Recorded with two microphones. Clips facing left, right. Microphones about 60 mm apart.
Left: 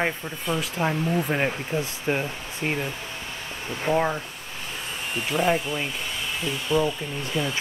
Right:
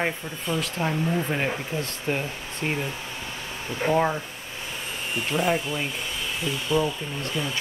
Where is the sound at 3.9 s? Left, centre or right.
Centre.